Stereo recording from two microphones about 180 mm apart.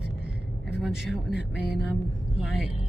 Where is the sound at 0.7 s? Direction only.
Centre (ahead or behind).